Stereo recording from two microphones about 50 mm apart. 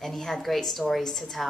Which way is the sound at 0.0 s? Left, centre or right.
Centre.